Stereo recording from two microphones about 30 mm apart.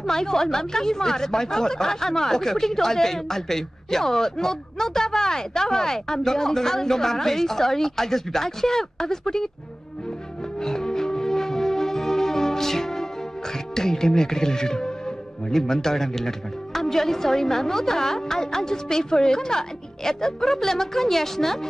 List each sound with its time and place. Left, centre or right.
0.0 s speech: centre
10.6 s music: centre